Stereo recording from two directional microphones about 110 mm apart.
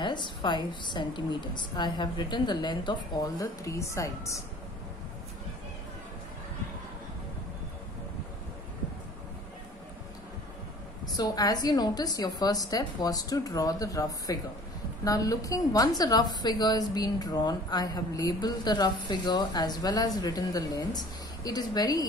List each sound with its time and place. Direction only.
0.0 s a woman's voice: 45° left (ahead or behind); by 4.4 s 30° left (ahead or behind)
11.1 s a woman's voice: 35° left (ahead or behind)